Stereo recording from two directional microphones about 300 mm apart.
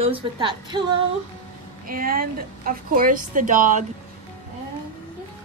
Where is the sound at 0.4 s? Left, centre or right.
Centre.